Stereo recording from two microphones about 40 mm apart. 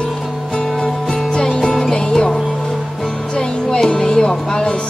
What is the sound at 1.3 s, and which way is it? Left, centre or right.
Music, centre.